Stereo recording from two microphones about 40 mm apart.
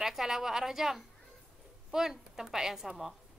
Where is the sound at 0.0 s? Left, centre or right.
Centre.